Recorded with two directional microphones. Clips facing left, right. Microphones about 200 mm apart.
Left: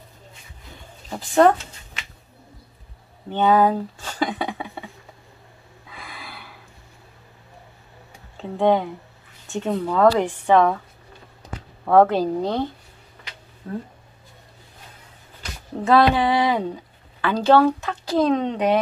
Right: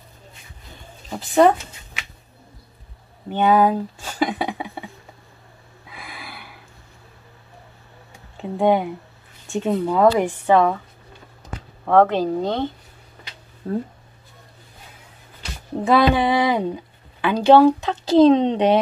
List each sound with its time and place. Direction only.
1.1 s a sound: 5° right (ahead or behind)
3.3 s a sound: 10° right (ahead or behind)
5.9 s snort: 10° right (ahead or behind)
8.4 s speech: 10° right (ahead or behind)
11.8 s speech: 5° left (ahead or behind)
13.6 s speech: 35° right (ahead or behind)
15.8 s speech: 15° right (ahead or behind)